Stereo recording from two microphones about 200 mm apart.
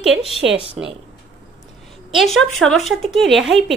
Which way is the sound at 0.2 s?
30° left (ahead or behind).